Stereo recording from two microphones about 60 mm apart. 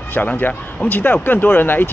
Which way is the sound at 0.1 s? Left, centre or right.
Left.